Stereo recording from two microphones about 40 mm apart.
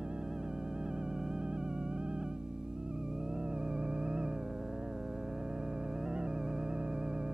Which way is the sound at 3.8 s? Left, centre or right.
Centre.